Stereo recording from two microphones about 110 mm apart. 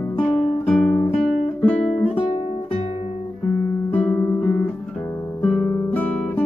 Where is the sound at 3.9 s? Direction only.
15° left (ahead or behind).